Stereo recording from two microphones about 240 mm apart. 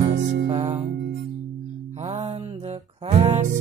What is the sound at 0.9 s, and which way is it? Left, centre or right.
Music, right.